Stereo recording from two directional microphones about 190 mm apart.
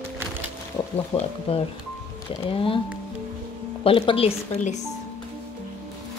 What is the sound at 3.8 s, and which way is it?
Speech, 30° left (ahead or behind).